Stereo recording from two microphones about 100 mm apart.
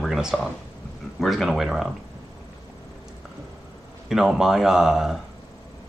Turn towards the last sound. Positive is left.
turn(degrees=-5)  # may be behind; listen again after turning